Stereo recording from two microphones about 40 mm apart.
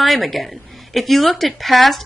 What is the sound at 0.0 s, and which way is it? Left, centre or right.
A woman's voice, centre.